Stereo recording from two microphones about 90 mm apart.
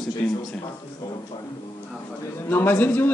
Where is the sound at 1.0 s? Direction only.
45° left (ahead or behind).